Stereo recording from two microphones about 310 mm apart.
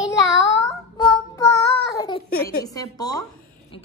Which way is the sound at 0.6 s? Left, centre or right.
Centre.